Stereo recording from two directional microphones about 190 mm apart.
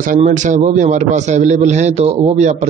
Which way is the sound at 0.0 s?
40° right (ahead or behind).